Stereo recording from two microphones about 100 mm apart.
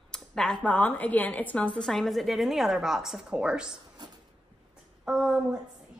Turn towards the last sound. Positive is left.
turn(degrees=-5)  # may be behind; listen again after turning